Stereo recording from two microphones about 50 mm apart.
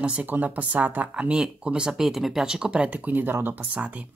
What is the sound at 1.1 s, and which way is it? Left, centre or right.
Speech, right.